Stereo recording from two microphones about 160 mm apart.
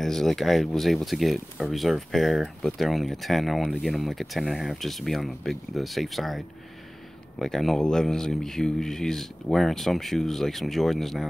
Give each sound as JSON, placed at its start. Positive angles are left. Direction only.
{"t": 0.0, "sound": "speech", "side_deg": 0}